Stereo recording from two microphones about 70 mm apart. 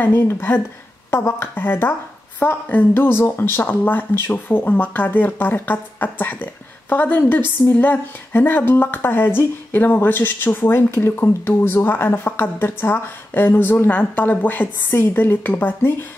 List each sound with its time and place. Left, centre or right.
0.0 s speech: left